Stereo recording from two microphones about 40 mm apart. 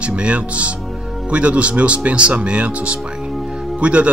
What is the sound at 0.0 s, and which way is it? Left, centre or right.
Speech, right.